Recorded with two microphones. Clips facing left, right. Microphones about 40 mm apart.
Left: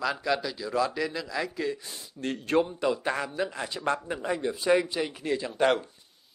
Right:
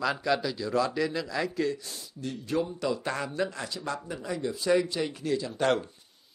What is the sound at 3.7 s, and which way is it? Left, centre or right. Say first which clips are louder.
Speech: left 6 dB; left.